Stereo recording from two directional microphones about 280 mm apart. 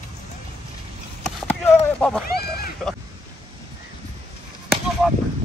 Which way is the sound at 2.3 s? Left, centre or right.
Left.